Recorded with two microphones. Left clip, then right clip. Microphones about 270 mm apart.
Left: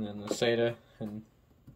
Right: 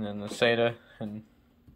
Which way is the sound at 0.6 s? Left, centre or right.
Centre.